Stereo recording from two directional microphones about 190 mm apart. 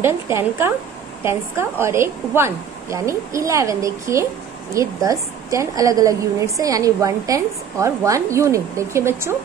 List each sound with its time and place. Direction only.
0.0 s a woman's voice: 10° right (ahead or behind)